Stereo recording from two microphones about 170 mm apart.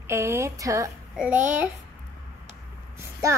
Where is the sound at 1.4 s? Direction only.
10° right (ahead or behind).